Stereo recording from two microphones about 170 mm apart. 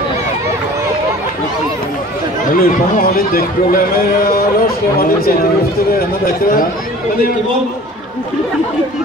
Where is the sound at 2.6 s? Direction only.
60° left (ahead or behind).